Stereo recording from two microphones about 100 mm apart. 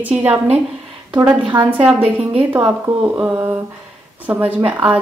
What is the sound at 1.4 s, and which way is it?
Speech, 50° right (ahead or behind).